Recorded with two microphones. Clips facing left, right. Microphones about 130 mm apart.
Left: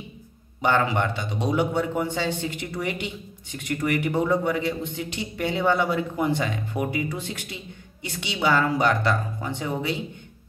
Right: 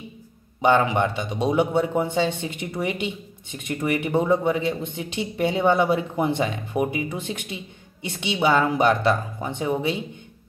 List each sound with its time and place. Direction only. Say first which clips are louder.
0.6 s speech: right 3 dB; 20° right (ahead or behind)